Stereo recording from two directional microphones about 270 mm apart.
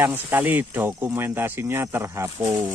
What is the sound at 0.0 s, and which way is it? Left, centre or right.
Speech, centre.